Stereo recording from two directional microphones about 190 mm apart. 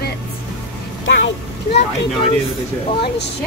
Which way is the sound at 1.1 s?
70° left (ahead or behind).